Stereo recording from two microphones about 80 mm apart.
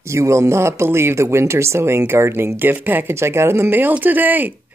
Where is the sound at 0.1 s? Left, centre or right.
Right.